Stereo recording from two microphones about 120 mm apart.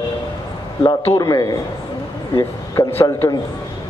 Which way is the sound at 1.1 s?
35° left (ahead or behind).